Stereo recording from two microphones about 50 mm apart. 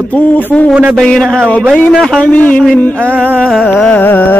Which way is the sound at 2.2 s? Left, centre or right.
Left.